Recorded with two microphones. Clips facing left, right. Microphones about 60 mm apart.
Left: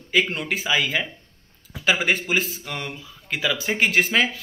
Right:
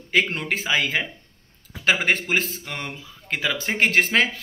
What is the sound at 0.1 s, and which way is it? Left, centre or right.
Speech, right.